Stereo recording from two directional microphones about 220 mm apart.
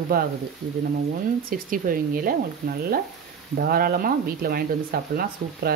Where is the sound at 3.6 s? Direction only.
45° right (ahead or behind).